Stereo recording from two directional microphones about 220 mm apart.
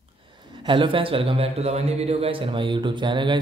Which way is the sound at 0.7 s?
25° right (ahead or behind).